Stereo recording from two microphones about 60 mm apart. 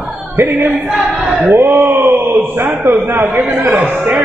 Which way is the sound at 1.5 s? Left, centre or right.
Right.